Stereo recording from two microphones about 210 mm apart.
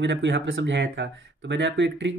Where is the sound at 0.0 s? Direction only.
60° right (ahead or behind).